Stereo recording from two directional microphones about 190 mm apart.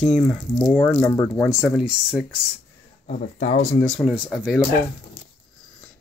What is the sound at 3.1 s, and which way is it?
Speech, 40° left (ahead or behind).